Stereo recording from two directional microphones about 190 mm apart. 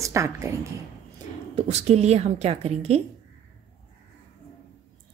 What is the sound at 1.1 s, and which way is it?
A woman's voice, 30° right (ahead or behind).